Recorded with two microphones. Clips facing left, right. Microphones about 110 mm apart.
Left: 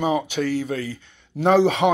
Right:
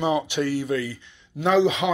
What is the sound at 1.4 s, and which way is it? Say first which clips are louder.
Speech: left 3 dB; 55° left (ahead or behind).